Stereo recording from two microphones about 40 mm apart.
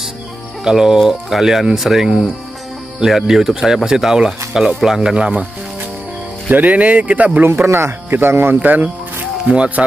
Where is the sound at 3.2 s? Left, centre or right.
Centre.